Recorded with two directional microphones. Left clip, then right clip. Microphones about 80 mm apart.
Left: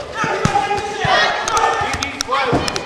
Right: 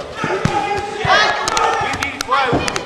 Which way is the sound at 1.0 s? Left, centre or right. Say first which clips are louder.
Right 2 dB; right.